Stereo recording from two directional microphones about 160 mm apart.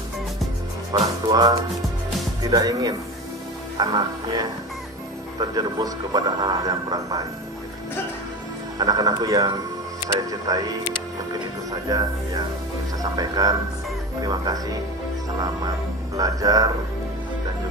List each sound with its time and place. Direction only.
0.9 s speech: 25° right (ahead or behind)
8.7 s speech: 25° right (ahead or behind)
16.2 s speech: 20° right (ahead or behind)